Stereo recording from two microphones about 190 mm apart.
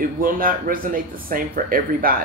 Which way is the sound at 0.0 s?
50° right (ahead or behind).